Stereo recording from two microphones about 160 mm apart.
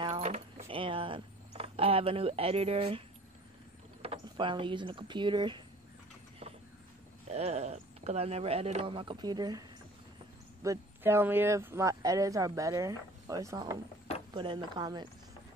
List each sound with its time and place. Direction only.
0.0 s keys jangling: 40° right (ahead or behind)
0.7 s a sound: 35° right (ahead or behind)
4.0 s speech: 35° right (ahead or behind)
7.2 s speech: 45° right (ahead or behind); by 13.7 s 20° right (ahead or behind)
14.3 s speech: 30° right (ahead or behind)